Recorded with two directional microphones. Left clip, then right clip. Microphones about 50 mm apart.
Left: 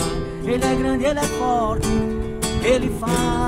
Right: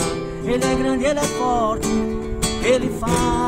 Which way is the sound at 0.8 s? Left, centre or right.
Right.